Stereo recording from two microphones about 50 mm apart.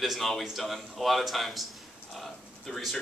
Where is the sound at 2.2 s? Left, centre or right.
Centre.